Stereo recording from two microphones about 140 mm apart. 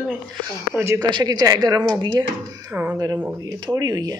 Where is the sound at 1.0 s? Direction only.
30° right (ahead or behind).